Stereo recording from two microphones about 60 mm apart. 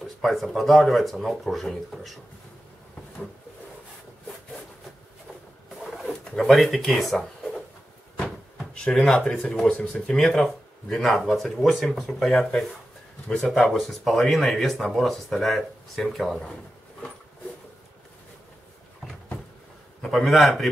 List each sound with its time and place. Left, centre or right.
0.0 s speech: centre
5.9 s a sound: centre
8.8 s speech: centre
10.0 s speech: centre
20.1 s speech: centre